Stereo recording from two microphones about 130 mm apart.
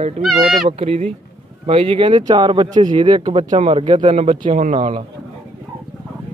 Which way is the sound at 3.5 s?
55° right (ahead or behind).